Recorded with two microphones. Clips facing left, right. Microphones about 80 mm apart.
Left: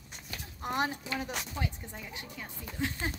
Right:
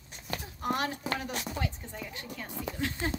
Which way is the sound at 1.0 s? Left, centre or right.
Right.